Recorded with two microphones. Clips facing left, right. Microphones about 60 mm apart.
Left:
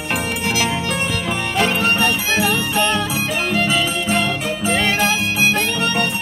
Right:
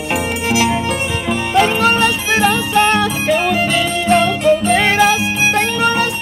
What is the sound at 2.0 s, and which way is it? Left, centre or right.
Music, right.